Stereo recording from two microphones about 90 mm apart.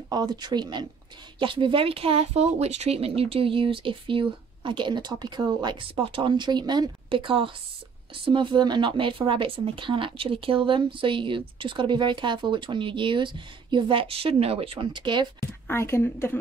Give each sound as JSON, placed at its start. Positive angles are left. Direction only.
{"t": 0.1, "sound": "speech", "side_deg": -50}
{"t": 1.4, "sound": "speech", "side_deg": -65}
{"t": 5.9, "sound": "speech", "side_deg": -70}
{"t": 7.1, "sound": "speech", "side_deg": -75}
{"t": 8.3, "sound": "speech", "side_deg": -60}
{"t": 15.7, "sound": "a woman's voice", "side_deg": 30}